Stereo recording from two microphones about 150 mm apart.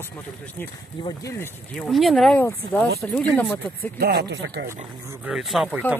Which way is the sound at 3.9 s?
90° right.